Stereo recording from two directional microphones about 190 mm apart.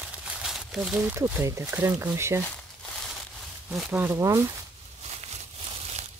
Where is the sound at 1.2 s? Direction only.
15° right (ahead or behind).